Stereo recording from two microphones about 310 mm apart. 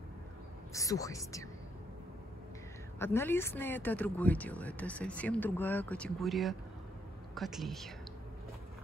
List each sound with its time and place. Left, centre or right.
0.7 s speech: centre
3.0 s speech: centre